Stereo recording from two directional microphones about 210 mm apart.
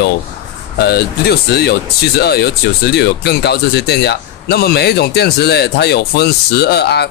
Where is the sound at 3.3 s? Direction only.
50° left (ahead or behind).